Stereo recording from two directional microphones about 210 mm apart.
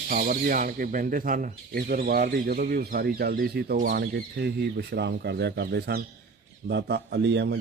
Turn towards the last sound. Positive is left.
turn(degrees=-55)  # may be behind; listen again after turning